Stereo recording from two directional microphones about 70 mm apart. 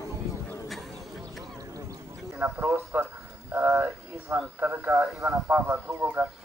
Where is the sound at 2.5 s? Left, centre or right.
Right.